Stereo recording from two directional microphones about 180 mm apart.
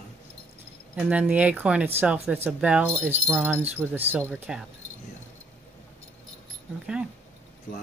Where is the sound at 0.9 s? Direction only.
5° right (ahead or behind).